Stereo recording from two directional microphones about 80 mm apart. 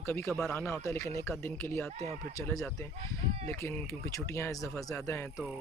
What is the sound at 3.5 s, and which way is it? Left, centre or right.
Speech, left.